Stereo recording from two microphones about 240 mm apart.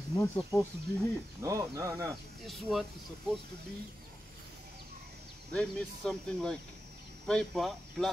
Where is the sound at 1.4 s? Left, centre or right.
Centre.